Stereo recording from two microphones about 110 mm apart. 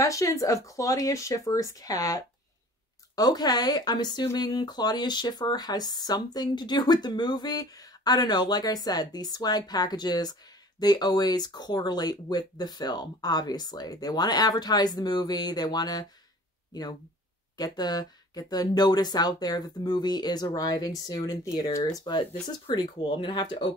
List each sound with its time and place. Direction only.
0.0 s speech: 30° left (ahead or behind)
17.6 s speech: 35° left (ahead or behind)
22.8 s speech: 50° left (ahead or behind)